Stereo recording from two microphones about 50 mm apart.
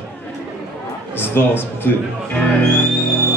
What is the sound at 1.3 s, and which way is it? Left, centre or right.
Speech, left.